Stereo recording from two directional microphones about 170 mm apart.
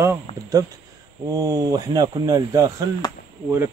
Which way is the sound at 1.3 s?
20° right (ahead or behind).